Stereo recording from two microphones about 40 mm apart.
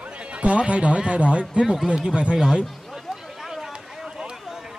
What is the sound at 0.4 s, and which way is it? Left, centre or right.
Speech, right.